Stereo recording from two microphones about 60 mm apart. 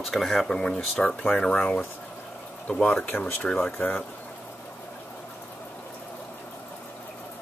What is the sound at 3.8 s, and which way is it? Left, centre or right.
Speech, left.